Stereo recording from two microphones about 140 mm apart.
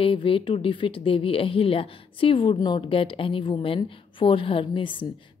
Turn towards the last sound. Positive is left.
turn(degrees=35)  # may be behind; listen again after turning